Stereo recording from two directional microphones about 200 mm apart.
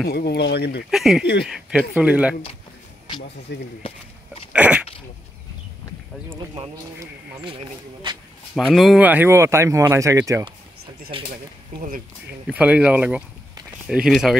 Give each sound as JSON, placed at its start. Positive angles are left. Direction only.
{"t": 0.1, "sound": "speech", "side_deg": 55}
{"t": 0.8, "sound": "speech", "side_deg": 0}
{"t": 3.5, "sound": "speech", "side_deg": 60}
{"t": 4.5, "sound": "sneeze", "side_deg": -5}
{"t": 6.3, "sound": "speech", "side_deg": -25}
{"t": 8.5, "sound": "speech", "side_deg": 0}
{"t": 12.4, "sound": "speech", "side_deg": -5}